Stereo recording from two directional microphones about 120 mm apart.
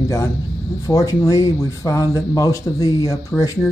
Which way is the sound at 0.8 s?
25° left (ahead or behind).